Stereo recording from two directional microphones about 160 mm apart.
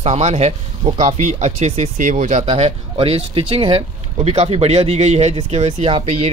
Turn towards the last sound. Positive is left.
turn(degrees=-40)  # may be behind; listen again after turning